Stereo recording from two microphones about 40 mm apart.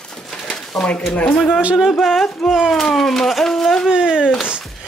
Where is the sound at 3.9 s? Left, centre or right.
Centre.